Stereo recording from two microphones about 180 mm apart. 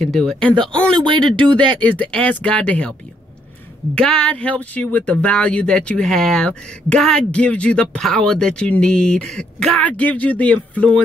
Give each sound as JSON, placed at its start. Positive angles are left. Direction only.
{"t": 0.0, "sound": "speech", "side_deg": 0}
{"t": 0.9, "sound": "speech", "side_deg": -25}
{"t": 1.8, "sound": "speech", "side_deg": 10}
{"t": 3.9, "sound": "speech", "side_deg": 5}